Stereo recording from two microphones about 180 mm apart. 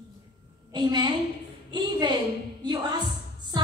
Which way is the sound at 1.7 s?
25° right (ahead or behind).